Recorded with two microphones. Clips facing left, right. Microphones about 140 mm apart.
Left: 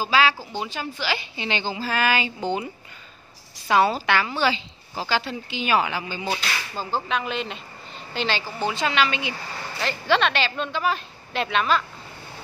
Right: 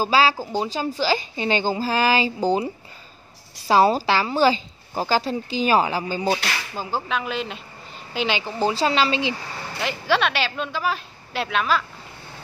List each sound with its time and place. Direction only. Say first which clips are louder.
0.0 s a woman's voice: right 2 dB; 35° right (ahead or behind)
6.7 s a woman's voice: left 1 dB; 10° right (ahead or behind)
8.5 s a woman's voice: right 4 dB; 30° right (ahead or behind)
9.8 s speech: even; 10° right (ahead or behind)